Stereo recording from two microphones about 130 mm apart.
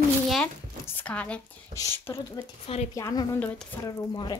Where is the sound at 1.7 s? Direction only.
25° left (ahead or behind).